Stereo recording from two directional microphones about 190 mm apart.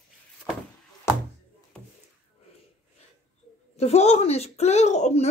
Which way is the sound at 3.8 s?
35° left (ahead or behind).